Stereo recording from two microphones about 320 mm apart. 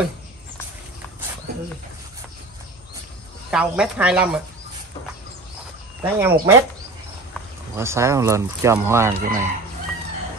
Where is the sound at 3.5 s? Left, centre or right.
Centre.